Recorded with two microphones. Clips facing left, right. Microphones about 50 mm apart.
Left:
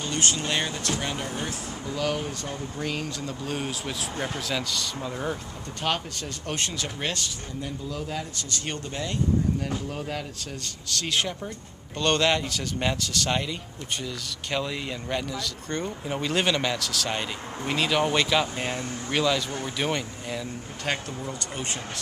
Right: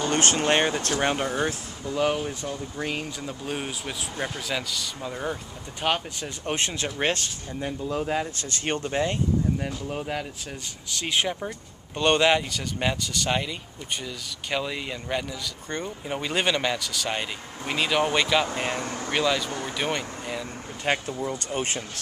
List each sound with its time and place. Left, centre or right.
0.0 s speech: right
2.8 s speech: centre
5.9 s speech: centre
21.2 s speech: right